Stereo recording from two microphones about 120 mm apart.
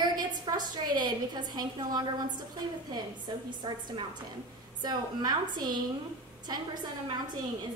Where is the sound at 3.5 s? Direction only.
40° right (ahead or behind).